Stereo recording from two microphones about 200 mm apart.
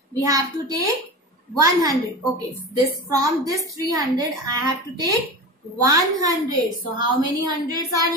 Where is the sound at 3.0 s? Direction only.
15° right (ahead or behind).